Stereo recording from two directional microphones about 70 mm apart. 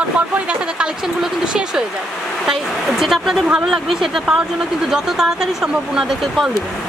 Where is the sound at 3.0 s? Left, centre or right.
Centre.